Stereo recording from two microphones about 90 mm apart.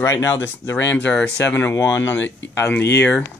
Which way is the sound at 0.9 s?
15° left (ahead or behind).